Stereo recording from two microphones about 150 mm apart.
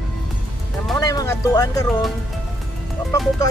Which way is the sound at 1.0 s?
25° left (ahead or behind).